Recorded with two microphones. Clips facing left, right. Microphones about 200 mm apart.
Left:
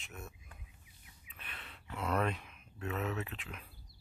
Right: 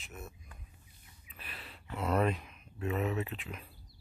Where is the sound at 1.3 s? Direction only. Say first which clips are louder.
Right 3 dB; 5° right (ahead or behind).